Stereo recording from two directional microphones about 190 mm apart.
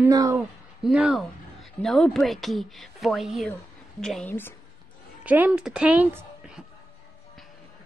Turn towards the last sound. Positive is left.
turn(degrees=0)  # may be behind; listen again after turning